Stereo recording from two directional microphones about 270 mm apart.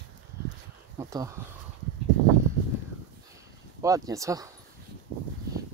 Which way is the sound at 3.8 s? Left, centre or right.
Centre.